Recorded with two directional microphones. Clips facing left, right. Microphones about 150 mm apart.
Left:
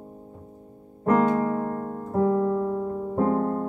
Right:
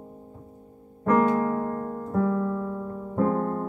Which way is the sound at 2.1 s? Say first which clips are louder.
Left 4 dB; 30° left (ahead or behind).